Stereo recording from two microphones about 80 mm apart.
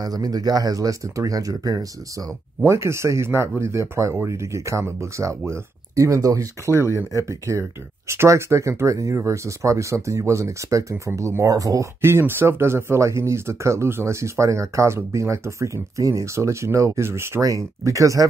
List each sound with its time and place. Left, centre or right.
0.0 s speech: right
2.6 s speech: right
12.0 s speech: right